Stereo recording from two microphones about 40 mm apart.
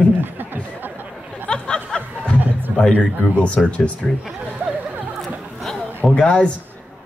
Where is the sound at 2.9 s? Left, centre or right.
Left.